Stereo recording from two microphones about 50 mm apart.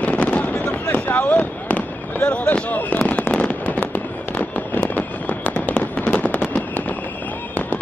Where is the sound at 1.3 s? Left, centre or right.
Left.